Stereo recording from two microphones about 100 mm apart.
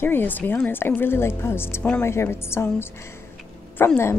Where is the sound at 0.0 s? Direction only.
20° left (ahead or behind).